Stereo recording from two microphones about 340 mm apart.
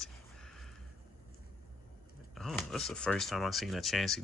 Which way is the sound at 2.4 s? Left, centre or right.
Centre.